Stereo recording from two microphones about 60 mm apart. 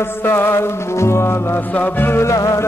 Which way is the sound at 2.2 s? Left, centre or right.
Left.